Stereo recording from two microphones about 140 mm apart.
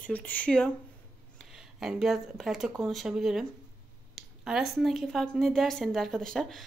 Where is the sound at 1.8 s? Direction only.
5° right (ahead or behind).